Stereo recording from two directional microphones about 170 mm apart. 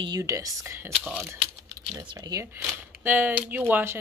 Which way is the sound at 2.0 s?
20° right (ahead or behind).